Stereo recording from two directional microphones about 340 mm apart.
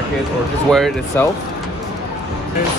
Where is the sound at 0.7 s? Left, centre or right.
Centre.